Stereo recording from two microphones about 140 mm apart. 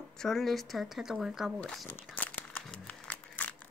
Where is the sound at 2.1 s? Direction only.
10° left (ahead or behind).